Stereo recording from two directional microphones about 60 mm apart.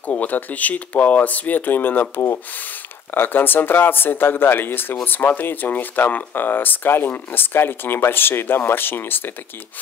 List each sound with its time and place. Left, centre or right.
0.0 s speech: left